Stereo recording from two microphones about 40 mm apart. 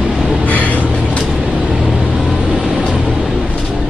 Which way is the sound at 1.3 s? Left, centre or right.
Right.